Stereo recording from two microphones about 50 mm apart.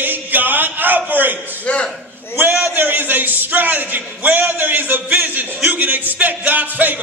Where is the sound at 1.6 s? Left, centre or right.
Left.